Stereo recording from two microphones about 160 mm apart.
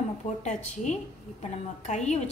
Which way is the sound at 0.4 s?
45° left (ahead or behind).